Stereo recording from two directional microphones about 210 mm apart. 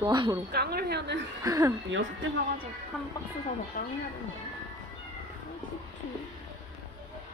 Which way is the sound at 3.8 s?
40° left (ahead or behind).